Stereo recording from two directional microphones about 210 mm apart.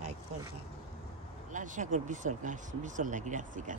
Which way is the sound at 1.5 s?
35° right (ahead or behind).